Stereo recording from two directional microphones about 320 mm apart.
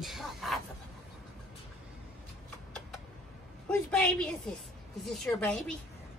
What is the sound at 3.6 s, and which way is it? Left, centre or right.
A woman's voice, centre.